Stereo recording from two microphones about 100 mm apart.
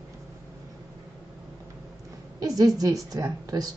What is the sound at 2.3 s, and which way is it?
A woman's voice, 35° right (ahead or behind).